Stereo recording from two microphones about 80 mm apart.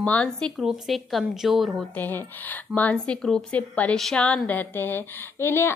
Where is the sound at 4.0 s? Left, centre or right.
Centre.